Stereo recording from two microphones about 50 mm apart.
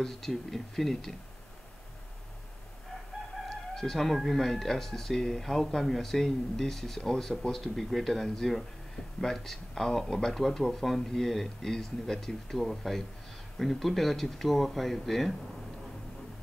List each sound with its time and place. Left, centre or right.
0.0 s speech: centre
3.4 s speech: centre